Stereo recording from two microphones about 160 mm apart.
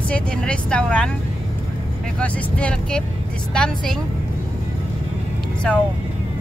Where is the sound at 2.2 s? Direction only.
10° left (ahead or behind).